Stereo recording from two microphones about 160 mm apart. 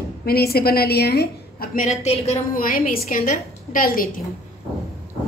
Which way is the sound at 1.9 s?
45° left (ahead or behind).